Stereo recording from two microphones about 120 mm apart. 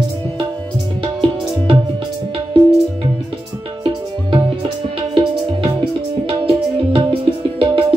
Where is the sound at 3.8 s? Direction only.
45° right (ahead or behind).